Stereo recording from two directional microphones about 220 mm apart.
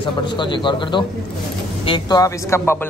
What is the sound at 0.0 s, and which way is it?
A man's voice, 20° left (ahead or behind).